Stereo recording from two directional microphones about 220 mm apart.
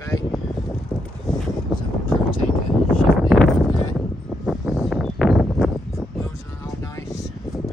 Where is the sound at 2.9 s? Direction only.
Centre (ahead or behind).